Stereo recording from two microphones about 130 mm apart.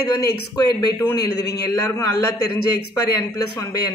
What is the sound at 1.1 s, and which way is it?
Speech, 30° left (ahead or behind).